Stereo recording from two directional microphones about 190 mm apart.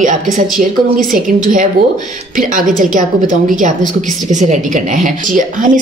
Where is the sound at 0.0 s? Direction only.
45° right (ahead or behind).